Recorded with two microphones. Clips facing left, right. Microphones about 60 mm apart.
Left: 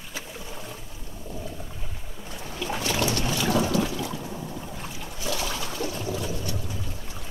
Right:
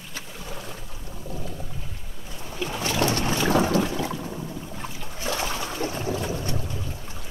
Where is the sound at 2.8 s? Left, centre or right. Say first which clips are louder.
Right 3 dB; right.